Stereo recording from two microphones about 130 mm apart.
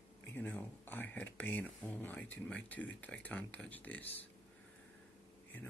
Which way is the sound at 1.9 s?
15° left (ahead or behind).